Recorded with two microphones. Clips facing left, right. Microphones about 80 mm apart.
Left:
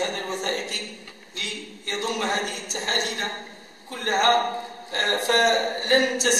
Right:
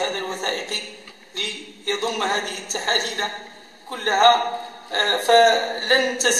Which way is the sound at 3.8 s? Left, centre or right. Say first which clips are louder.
Right 5 dB; right.